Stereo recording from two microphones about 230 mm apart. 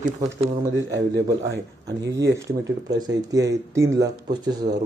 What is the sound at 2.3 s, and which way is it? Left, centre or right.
Speech, centre.